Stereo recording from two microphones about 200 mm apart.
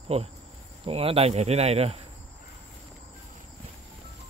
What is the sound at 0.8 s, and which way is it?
Speech, 30° right (ahead or behind).